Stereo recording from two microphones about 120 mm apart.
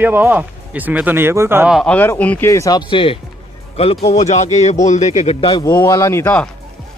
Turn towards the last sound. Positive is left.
turn(degrees=20)  # may be behind; listen again after turning